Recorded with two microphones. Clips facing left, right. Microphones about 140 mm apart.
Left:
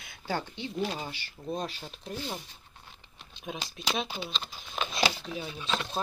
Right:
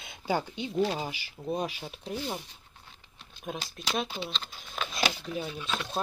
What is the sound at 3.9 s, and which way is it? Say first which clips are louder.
Speech: right 5 dB; centre (ahead or behind).